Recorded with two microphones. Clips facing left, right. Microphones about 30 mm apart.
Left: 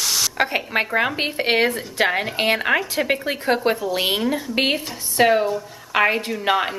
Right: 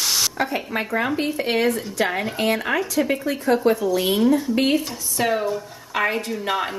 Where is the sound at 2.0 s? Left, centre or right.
Left.